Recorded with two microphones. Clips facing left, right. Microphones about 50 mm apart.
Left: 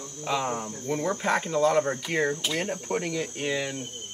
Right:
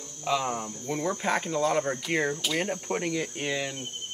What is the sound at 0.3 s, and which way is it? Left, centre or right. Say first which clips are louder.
Speech: even; centre.